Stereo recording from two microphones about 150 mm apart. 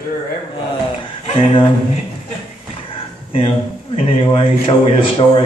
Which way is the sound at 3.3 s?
40° left (ahead or behind).